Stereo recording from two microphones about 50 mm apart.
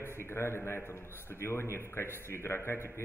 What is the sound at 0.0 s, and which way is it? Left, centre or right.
A man's voice, left.